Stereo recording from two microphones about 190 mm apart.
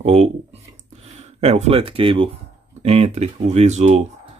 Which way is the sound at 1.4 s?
30° right (ahead or behind).